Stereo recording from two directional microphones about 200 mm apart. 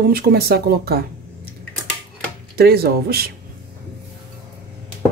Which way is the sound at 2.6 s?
50° right (ahead or behind).